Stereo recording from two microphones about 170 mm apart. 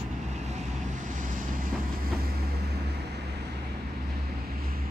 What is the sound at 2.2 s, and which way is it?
Vehicle, 75° right (ahead or behind).